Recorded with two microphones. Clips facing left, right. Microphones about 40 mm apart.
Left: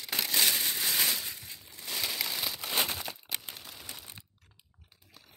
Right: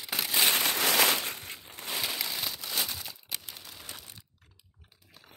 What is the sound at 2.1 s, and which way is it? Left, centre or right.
Crumpling, centre.